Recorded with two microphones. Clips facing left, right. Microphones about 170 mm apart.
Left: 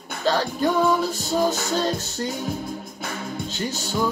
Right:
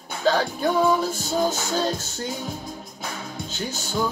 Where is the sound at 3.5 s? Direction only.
Centre (ahead or behind).